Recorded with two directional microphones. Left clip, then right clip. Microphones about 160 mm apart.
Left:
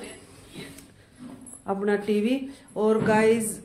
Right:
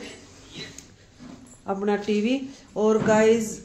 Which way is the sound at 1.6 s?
25° right (ahead or behind).